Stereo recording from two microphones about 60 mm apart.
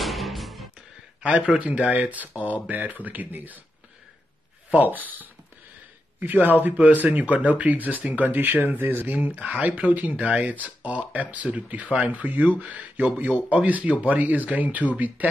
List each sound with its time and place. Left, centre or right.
0.0 s music: centre
1.2 s speech: centre
4.6 s speech: right